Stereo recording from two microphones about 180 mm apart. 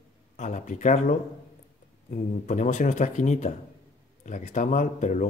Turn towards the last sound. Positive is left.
turn(degrees=40)  # may be behind; listen again after turning